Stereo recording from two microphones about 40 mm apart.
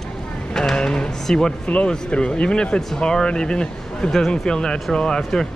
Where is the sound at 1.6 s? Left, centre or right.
Left; by 5.5 s centre.